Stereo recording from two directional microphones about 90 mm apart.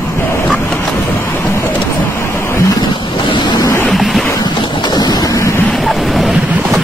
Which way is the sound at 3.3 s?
55° left (ahead or behind).